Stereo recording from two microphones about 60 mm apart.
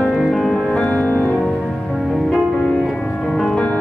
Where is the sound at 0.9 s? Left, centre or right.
Left.